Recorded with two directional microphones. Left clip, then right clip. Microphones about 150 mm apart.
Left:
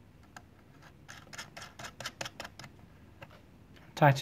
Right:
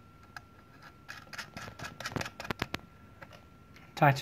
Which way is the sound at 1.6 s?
10° left (ahead or behind).